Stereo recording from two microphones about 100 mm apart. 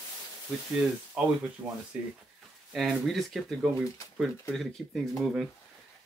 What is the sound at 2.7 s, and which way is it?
Speech, centre (ahead or behind).